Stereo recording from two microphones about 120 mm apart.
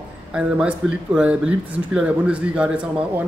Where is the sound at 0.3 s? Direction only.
10° right (ahead or behind).